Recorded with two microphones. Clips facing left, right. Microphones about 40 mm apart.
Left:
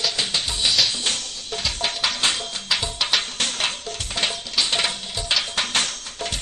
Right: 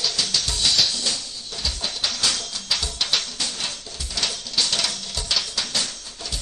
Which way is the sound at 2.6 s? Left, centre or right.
Left.